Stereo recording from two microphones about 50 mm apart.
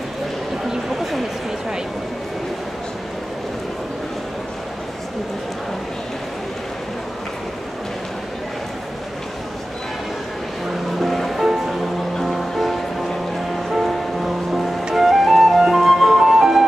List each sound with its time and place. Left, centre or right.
0.7 s a sound: centre
11.0 s music: centre
13.7 s music: centre